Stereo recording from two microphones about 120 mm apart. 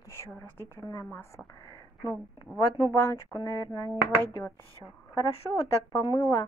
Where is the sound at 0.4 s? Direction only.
20° left (ahead or behind).